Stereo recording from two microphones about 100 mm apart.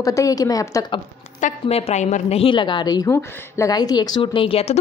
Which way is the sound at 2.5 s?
50° left (ahead or behind).